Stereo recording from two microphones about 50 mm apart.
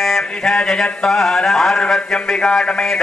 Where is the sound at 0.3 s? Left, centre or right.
Centre.